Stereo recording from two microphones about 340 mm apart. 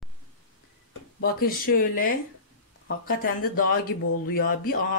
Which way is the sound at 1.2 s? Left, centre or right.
Left.